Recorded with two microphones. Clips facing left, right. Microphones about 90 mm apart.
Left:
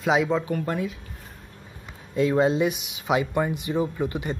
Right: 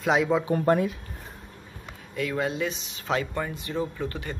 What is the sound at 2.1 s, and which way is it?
Speech, 25° left (ahead or behind).